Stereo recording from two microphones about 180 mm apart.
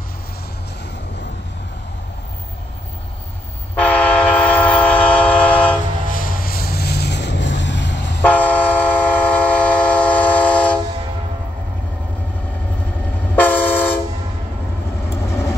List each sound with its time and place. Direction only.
3.8 s train: 5° left (ahead or behind)
6.0 s vehicle: 50° left (ahead or behind); by 8.2 s 80° left
8.2 s train: 10° left (ahead or behind)
13.4 s train: 10° left (ahead or behind)